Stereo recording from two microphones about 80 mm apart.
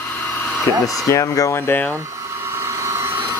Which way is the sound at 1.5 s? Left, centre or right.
Left.